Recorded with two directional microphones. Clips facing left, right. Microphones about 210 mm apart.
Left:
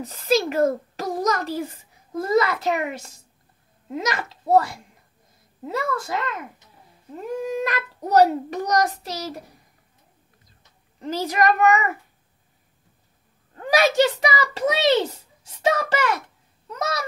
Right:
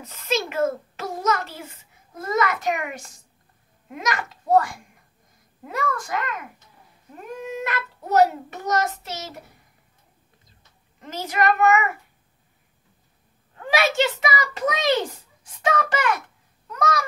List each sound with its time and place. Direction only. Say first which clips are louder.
0.0 s a child's voice: left 5 dB; 35° left (ahead or behind)
11.0 s a child's voice: left 3 dB; 35° left (ahead or behind)
13.7 s a child's voice: left 3 dB; 40° left (ahead or behind)